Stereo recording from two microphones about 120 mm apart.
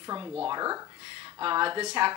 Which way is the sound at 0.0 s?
30° right (ahead or behind).